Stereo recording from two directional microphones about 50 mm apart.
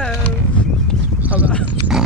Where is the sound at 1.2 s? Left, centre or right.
Right.